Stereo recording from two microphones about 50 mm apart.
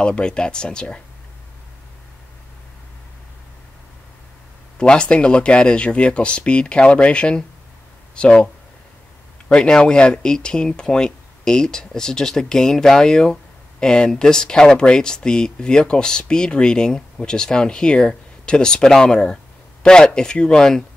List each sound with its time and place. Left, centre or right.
0.0 s speech: centre
4.7 s speech: centre
9.5 s speech: centre